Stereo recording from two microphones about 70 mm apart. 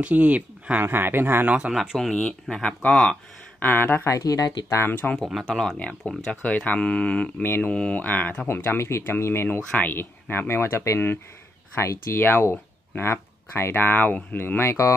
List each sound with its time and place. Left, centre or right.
0.0 s speech: right
0.8 s speech: right
1.6 s speech: centre
2.5 s speech: centre; by 4.1 s left
4.1 s speech: left
4.7 s speech: left
5.5 s speech: centre
5.8 s speech: centre
7.4 s speech: left
7.7 s speech: centre
8.7 s speech: left
12.2 s speech: left